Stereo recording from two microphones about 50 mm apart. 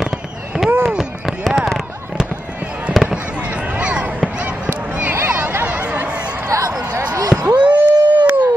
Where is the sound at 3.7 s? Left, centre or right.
Right.